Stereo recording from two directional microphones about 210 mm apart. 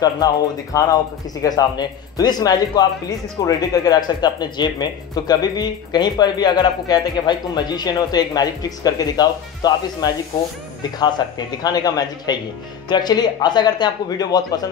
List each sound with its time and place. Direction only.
0.7 s speech: 15° left (ahead or behind)